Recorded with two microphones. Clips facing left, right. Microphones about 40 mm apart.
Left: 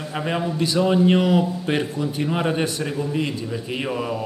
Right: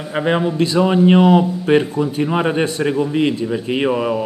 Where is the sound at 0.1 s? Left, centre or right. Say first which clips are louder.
Right 7 dB; right.